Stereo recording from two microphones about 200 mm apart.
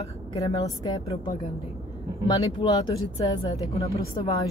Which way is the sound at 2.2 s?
20° left (ahead or behind).